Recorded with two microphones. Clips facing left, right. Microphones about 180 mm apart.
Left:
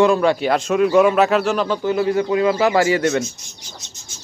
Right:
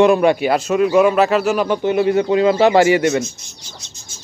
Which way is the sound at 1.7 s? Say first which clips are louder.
Right 3 dB; 20° right (ahead or behind).